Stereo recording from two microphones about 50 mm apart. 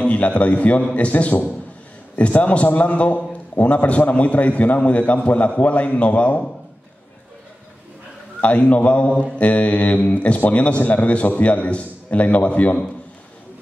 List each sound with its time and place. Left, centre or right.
0.0 s a man's voice: left
8.4 s a man's voice: left